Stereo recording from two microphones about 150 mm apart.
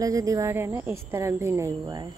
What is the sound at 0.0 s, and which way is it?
Speech, 20° right (ahead or behind).